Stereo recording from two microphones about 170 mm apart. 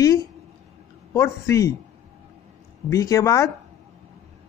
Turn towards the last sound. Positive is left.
turn(degrees=20)  # may be behind; listen again after turning